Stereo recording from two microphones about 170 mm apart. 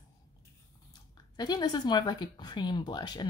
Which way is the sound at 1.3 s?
25° left (ahead or behind).